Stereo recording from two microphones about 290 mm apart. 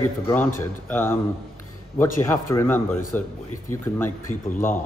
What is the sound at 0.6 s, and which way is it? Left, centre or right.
Speech, centre.